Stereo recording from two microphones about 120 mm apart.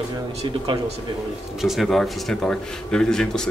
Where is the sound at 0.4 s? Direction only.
60° right (ahead or behind).